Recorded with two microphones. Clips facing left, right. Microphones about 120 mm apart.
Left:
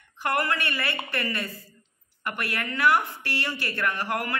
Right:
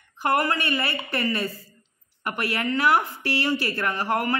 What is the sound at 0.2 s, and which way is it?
A man's voice, 30° right (ahead or behind).